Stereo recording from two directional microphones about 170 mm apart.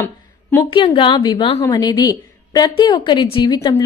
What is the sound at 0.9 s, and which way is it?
A woman's voice, 30° left (ahead or behind).